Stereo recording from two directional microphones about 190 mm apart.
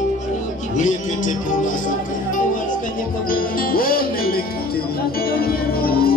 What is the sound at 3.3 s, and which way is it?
Music, 50° left (ahead or behind).